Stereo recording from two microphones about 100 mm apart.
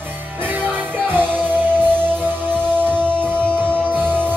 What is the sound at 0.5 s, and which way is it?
Music, 20° right (ahead or behind).